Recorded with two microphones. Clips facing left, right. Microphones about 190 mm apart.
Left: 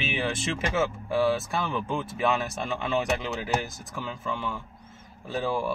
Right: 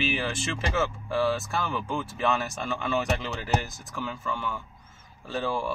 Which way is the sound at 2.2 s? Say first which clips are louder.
Left 1 dB; 10° left (ahead or behind).